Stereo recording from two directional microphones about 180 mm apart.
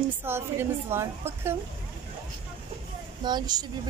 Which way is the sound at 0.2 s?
10° right (ahead or behind).